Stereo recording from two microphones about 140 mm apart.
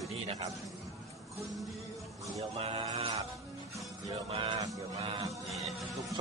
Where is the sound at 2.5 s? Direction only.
45° right (ahead or behind).